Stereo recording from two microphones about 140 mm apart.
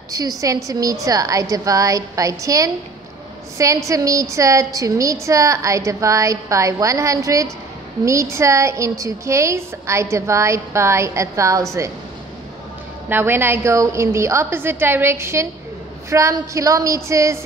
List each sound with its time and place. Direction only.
0.1 s a woman's voice: 25° right (ahead or behind)
13.1 s a woman's voice: 15° right (ahead or behind)